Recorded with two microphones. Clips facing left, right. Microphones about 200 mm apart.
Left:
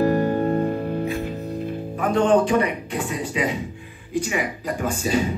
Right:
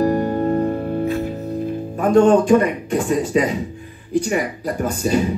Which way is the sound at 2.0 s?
45° right (ahead or behind).